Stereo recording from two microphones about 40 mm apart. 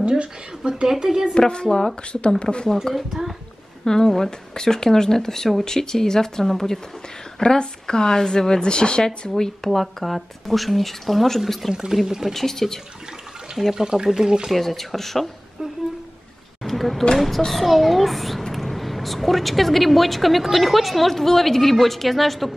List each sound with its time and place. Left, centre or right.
0.7 s speech: centre
1.3 s a woman's voice: left
2.7 s a woman's voice: centre
3.8 s a woman's voice: centre
9.7 s a woman's voice: centre
11.7 s speech: centre
12.4 s speech: centre
13.7 s speech: centre
14.5 s a woman's voice: centre
16.6 s a sound: centre
17.5 s a woman's voice: centre